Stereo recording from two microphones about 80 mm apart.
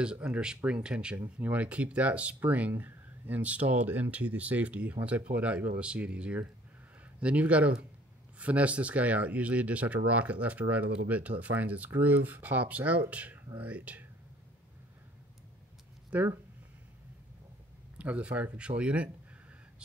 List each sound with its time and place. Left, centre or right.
0.0 s speech: centre
1.1 s speech: right
16.1 s speech: centre
17.9 s speech: centre